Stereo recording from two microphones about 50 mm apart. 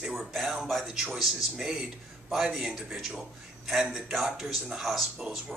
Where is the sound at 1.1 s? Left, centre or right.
Centre.